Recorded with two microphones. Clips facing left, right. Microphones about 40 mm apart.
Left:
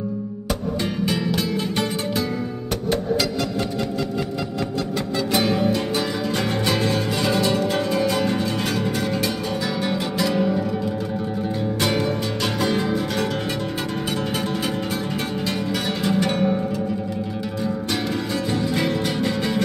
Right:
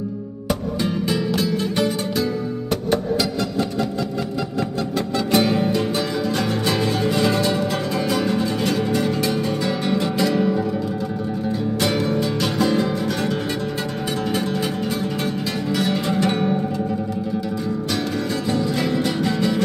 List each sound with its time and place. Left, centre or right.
0.8 s music: centre
1.8 s music: centre
2.7 s music: centre
14.1 s music: centre
15.8 s music: centre
17.9 s music: centre